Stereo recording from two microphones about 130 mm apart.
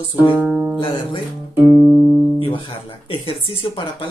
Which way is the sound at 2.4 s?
40° left (ahead or behind).